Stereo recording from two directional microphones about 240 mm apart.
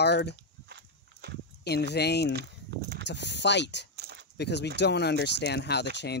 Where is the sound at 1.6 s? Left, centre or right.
Left.